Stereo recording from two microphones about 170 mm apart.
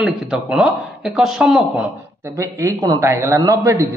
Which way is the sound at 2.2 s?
20° right (ahead or behind).